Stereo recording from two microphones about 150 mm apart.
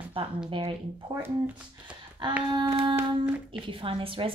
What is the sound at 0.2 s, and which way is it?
Speech, 35° right (ahead or behind).